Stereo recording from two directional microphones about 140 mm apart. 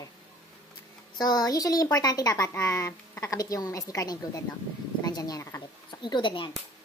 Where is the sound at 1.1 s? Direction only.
30° left (ahead or behind).